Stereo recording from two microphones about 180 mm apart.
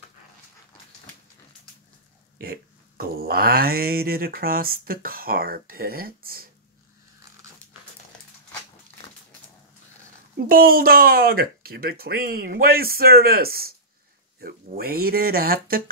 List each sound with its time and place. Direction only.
2.4 s speech: 55° right (ahead or behind)
10.5 s speech: 55° right (ahead or behind)